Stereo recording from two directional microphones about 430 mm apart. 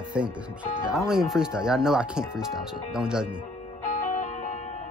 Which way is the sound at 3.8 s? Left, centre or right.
Centre.